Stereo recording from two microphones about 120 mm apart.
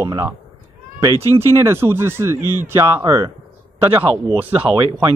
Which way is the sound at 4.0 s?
15° right (ahead or behind).